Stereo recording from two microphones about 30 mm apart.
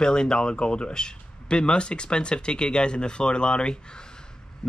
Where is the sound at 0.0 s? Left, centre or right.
Left.